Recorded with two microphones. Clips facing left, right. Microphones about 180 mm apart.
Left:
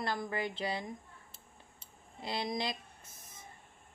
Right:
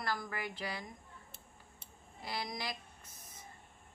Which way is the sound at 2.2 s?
25° left (ahead or behind).